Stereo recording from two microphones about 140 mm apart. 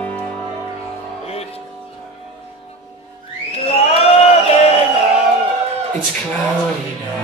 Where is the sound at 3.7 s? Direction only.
45° left (ahead or behind).